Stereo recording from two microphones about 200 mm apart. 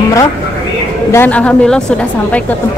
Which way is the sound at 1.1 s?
10° left (ahead or behind).